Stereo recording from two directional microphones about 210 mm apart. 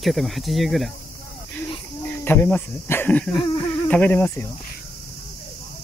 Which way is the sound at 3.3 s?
25° left (ahead or behind).